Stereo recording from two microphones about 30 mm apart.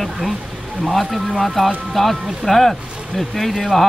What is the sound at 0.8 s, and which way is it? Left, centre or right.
Speech, centre.